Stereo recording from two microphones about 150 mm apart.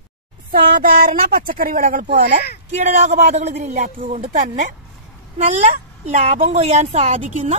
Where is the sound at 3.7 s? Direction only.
70° right (ahead or behind).